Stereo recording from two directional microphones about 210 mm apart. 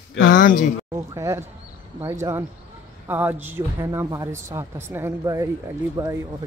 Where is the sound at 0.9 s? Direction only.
15° right (ahead or behind).